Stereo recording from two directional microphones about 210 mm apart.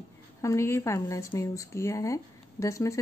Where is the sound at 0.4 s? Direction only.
15° left (ahead or behind).